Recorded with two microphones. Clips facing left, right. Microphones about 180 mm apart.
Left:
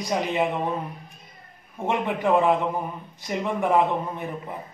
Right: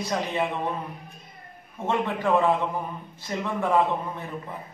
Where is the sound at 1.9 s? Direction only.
15° left (ahead or behind).